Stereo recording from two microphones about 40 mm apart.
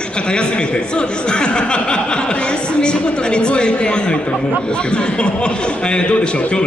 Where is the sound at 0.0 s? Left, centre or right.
Left.